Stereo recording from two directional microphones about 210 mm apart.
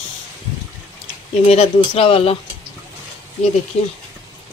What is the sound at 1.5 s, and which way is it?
Speech, 30° left (ahead or behind).